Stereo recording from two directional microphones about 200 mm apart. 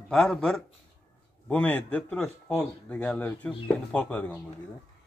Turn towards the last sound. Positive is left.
turn(degrees=5)  # may be behind; listen again after turning